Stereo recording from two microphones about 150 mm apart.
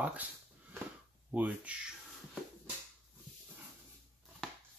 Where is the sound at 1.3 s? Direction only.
10° right (ahead or behind).